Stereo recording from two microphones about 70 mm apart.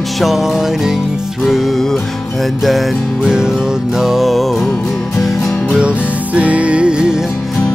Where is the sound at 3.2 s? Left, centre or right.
Centre.